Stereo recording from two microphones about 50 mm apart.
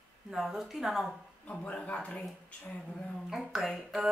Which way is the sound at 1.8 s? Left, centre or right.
Left.